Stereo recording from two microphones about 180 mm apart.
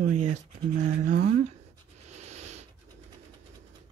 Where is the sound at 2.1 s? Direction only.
40° right (ahead or behind).